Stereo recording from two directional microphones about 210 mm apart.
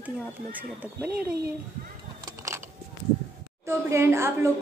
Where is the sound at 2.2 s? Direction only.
15° right (ahead or behind).